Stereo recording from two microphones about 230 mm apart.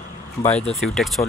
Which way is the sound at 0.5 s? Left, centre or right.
Left.